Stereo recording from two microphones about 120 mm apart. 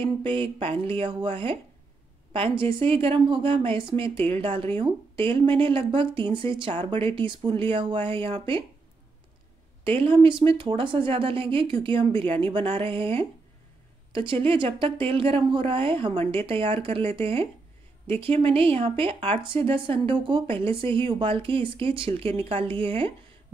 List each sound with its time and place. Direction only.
0.0 s speech: 45° right (ahead or behind)
2.6 s speech: 50° right (ahead or behind)
9.8 s speech: 50° right (ahead or behind)